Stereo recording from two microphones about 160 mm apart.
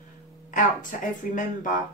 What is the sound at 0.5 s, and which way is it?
Speech, 55° left (ahead or behind).